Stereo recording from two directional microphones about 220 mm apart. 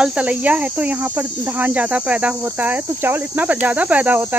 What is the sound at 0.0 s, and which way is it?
Cricket, 5° right (ahead or behind).